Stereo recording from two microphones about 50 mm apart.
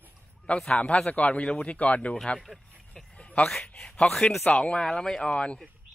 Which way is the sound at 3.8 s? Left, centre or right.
Centre.